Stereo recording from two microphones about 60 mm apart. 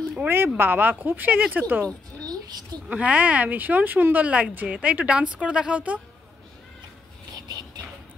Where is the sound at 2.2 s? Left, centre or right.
Right.